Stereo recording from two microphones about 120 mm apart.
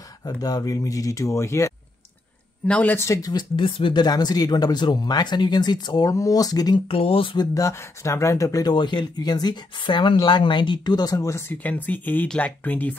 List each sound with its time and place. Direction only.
0.4 s speech: 30° left (ahead or behind)
2.6 s speech: 10° left (ahead or behind)
3.1 s speech: 30° left (ahead or behind)
3.5 s speech: 45° left (ahead or behind)
6.9 s speech: 50° left (ahead or behind)
7.5 s speech: 25° left (ahead or behind)